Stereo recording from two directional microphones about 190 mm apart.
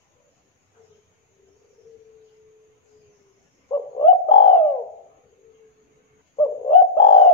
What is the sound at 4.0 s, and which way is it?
Bird, 30° left (ahead or behind).